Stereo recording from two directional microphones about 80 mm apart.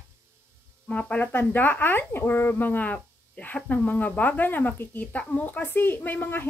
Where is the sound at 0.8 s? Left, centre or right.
Centre.